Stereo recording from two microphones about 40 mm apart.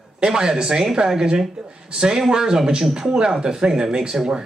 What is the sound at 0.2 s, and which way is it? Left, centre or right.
A man's voice, centre.